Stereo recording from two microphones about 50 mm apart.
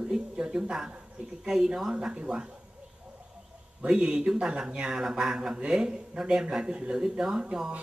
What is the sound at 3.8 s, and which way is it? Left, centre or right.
Speech, centre.